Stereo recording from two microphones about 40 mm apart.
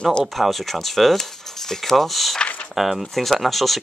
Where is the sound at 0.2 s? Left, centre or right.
Centre.